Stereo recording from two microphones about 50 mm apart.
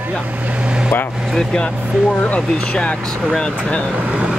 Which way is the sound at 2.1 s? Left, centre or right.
Left.